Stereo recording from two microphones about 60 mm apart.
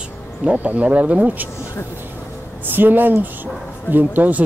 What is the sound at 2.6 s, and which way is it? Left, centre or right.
Speech, right.